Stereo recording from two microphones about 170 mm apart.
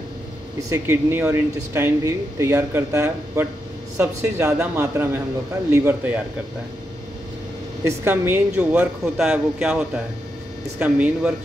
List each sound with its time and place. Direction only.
0.6 s speech: 15° right (ahead or behind)
7.8 s speech: 15° right (ahead or behind)